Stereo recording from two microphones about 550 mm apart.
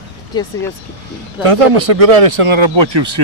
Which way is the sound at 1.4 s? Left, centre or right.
Right.